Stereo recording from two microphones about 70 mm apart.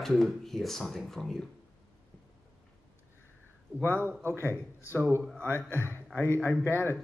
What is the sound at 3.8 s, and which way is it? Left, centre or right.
Speech, left.